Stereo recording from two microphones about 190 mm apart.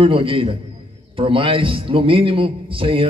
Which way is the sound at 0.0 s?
30° right (ahead or behind).